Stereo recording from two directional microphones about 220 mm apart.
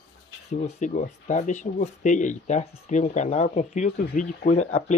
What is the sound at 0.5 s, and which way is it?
Speech, 30° left (ahead or behind).